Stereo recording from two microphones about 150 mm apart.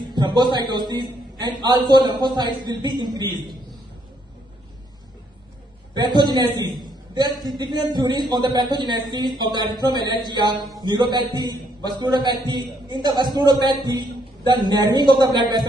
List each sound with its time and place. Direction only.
0.0 s a man's voice: 30° right (ahead or behind)
5.9 s a man's voice: 30° right (ahead or behind)